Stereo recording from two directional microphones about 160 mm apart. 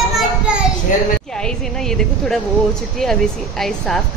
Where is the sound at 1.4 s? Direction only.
5° left (ahead or behind).